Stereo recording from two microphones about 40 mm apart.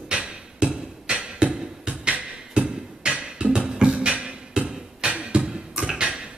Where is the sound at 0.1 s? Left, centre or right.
Right.